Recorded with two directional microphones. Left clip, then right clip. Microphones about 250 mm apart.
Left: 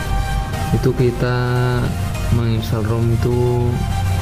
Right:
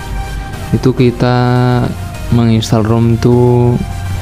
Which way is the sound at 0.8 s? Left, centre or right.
Right.